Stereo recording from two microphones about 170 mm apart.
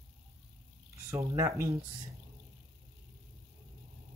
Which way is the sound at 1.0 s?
20° right (ahead or behind).